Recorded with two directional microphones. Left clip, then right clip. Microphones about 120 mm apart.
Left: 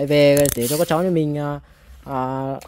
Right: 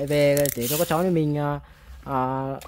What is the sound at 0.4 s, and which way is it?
Speech, 35° left (ahead or behind).